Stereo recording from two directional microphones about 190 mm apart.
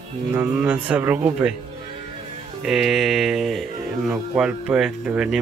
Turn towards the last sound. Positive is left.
turn(degrees=-5)  # may be behind; listen again after turning